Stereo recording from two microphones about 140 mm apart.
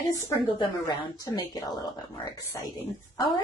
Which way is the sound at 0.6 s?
30° left (ahead or behind).